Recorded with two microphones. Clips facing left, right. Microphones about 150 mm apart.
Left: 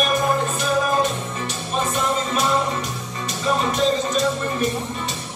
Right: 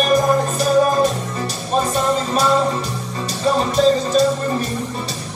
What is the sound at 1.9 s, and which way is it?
Music, 35° right (ahead or behind).